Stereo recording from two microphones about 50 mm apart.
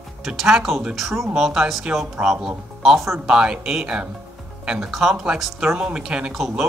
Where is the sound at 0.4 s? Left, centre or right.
Centre.